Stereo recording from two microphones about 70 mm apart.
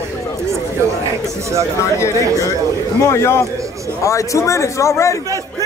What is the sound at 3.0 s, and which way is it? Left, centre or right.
A man's voice, left.